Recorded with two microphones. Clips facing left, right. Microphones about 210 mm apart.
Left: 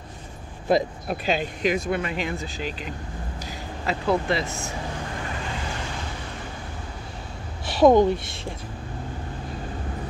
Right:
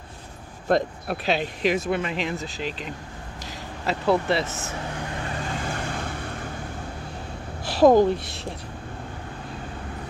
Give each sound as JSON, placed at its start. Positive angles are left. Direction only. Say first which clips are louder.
{"t": 0.7, "sound": "speech", "louder": "left 1 dB", "side_deg": 0}
{"t": 5.7, "sound": "vehicle", "louder": "right 3 dB", "side_deg": -55}
{"t": 7.6, "sound": "a sound", "louder": "even", "side_deg": 0}